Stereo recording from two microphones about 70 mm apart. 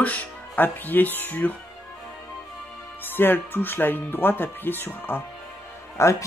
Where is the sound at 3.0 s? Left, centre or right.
Left.